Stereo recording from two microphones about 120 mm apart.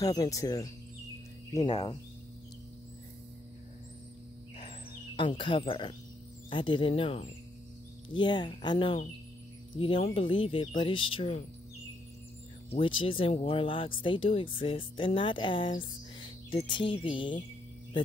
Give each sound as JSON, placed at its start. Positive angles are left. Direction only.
{"t": 0.0, "sound": "speech", "side_deg": 30}
{"t": 4.6, "sound": "a sound", "side_deg": 45}
{"t": 6.5, "sound": "speech", "side_deg": 45}
{"t": 8.1, "sound": "speech", "side_deg": 40}
{"t": 12.7, "sound": "speech", "side_deg": 45}